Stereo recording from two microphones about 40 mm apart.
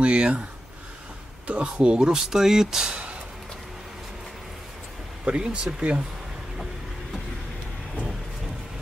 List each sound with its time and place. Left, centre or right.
0.0 s speech: right
1.5 s speech: right
2.9 s a sound: right
5.2 s speech: right